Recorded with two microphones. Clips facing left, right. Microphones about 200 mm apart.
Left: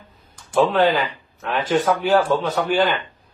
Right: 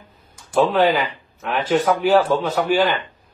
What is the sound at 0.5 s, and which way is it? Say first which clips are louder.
A man's voice: even; centre (ahead or behind).